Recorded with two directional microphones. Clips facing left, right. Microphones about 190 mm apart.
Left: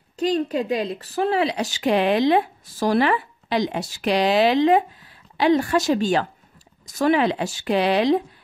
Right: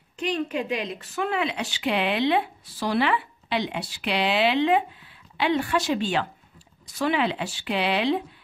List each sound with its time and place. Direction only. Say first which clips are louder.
0.1 s speech: left 5 dB; 35° left (ahead or behind)